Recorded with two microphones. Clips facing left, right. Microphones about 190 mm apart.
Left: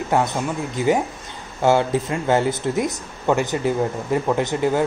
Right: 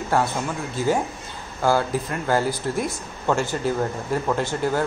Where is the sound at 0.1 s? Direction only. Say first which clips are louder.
Left 2 dB; 20° left (ahead or behind).